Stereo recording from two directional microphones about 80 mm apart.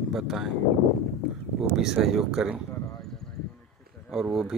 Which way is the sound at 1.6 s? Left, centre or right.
Centre.